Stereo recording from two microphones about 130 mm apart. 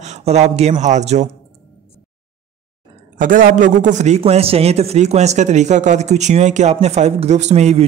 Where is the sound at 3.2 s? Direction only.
90° right; by 4.2 s 65° right (ahead or behind).